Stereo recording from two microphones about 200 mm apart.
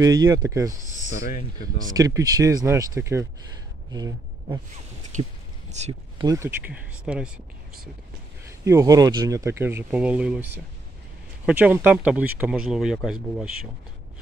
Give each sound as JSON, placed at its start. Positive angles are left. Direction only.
{"t": 0.0, "sound": "speech", "side_deg": -20}
{"t": 1.2, "sound": "speech", "side_deg": 45}
{"t": 2.0, "sound": "speech", "side_deg": -15}
{"t": 5.1, "sound": "speech", "side_deg": -40}
{"t": 6.2, "sound": "speech", "side_deg": -15}
{"t": 8.5, "sound": "speech", "side_deg": -15}